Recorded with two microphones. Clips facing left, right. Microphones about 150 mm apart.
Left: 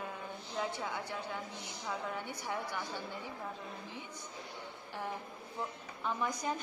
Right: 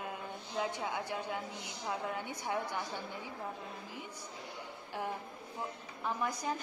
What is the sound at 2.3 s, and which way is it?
Speech, 20° right (ahead or behind).